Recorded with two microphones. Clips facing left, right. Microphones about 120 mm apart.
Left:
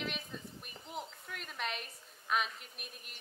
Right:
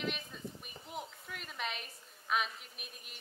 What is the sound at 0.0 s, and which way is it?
A woman's voice, centre (ahead or behind).